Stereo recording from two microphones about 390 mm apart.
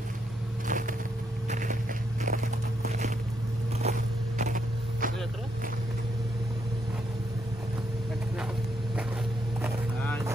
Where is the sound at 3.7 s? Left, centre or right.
Centre.